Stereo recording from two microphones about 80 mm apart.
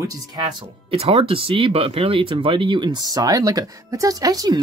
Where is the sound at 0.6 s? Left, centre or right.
Right.